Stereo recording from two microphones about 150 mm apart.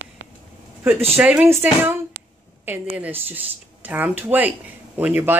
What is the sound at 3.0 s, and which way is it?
Speech, 15° right (ahead or behind).